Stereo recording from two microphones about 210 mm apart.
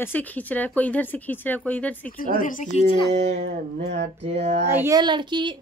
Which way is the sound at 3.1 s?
35° right (ahead or behind).